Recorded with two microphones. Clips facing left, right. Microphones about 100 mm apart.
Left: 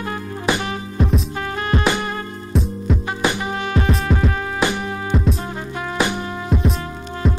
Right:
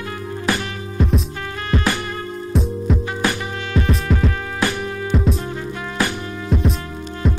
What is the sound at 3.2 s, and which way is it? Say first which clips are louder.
Music: left 1 dB; 20° left (ahead or behind).